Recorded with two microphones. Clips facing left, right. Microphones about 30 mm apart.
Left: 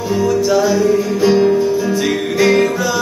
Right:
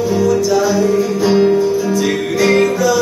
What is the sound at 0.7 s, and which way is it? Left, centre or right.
Music, centre.